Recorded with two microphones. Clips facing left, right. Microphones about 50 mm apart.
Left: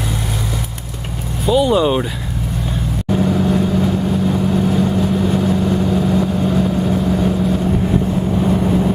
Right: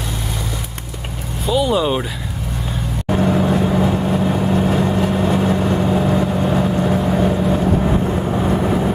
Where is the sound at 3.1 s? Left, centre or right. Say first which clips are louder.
Even; right.